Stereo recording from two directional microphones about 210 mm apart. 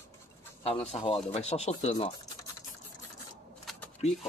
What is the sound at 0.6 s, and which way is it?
Speech, 30° left (ahead or behind).